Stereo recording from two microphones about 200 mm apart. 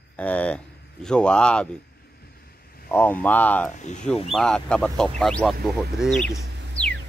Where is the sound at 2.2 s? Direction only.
50° left (ahead or behind).